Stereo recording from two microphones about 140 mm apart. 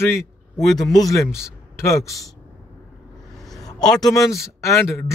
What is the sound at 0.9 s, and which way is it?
A man's voice, 25° left (ahead or behind).